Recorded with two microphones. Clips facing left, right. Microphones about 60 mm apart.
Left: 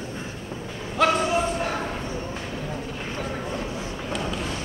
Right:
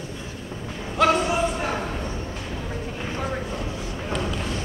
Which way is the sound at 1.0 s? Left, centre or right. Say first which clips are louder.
Right 2 dB; centre.